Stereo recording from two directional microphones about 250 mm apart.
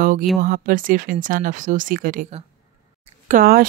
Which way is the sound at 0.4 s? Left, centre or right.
Right.